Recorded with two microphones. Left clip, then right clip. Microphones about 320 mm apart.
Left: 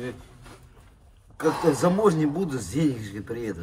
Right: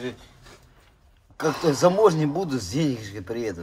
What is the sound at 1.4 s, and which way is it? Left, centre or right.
Speech, centre.